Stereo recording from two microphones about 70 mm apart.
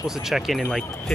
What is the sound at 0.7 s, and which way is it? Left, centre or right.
Speech, centre.